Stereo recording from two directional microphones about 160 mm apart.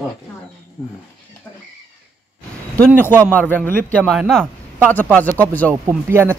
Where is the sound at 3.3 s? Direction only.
10° left (ahead or behind).